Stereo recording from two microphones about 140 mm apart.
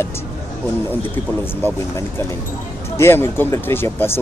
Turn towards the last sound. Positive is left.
turn(degrees=15)  # may be behind; listen again after turning